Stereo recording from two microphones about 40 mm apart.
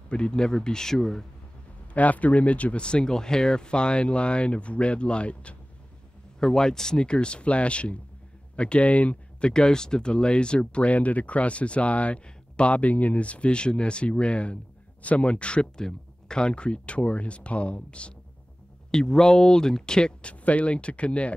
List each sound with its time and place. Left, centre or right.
0.1 s speech: left
2.0 s speech: left
6.4 s speech: centre; by 9.5 s left
9.5 s speech: centre
18.9 s speech: centre